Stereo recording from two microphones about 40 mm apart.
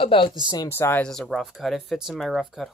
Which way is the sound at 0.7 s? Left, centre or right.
Left.